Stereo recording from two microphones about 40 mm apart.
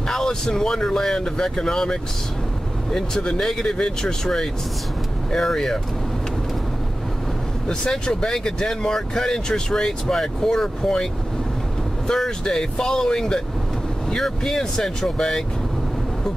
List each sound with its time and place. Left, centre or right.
0.1 s speech: centre
3.3 s speech: centre
7.9 s speech: centre
12.4 s speech: centre